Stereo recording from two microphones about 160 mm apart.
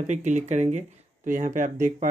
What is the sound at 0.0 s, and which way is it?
Speech, 50° right (ahead or behind).